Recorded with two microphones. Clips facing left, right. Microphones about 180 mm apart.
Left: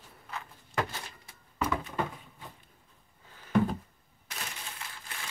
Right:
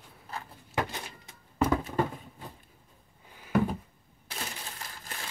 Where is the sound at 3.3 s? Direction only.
10° right (ahead or behind).